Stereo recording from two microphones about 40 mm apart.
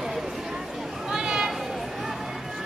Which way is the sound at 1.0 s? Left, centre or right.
Centre.